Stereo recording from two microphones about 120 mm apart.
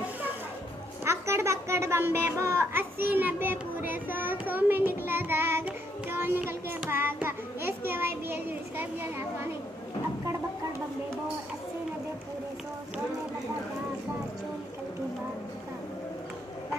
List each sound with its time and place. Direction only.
1.0 s a child's voice: 20° right (ahead or behind)